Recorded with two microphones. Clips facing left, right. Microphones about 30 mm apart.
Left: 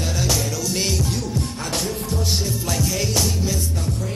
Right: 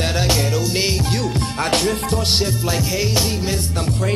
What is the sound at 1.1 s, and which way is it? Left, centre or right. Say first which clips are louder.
Music: right 5 dB; right.